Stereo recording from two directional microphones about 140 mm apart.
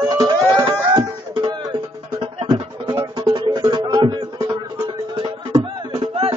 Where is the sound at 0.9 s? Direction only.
30° right (ahead or behind).